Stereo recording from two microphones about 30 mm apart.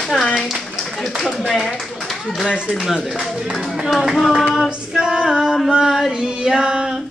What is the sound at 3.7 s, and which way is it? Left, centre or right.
Clapping, centre.